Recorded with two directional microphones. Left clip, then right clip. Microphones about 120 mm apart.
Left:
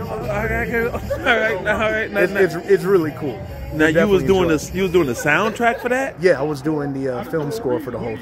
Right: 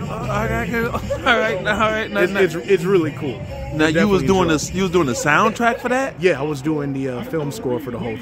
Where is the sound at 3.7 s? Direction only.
40° right (ahead or behind).